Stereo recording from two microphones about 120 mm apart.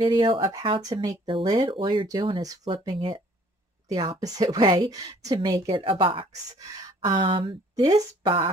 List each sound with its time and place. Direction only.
0.0 s a woman's voice: 45° right (ahead or behind)
2.4 s a woman's voice: 30° right (ahead or behind)
2.7 s a woman's voice: 40° right (ahead or behind)
5.7 s a woman's voice: 45° right (ahead or behind)
7.7 s speech: 35° right (ahead or behind)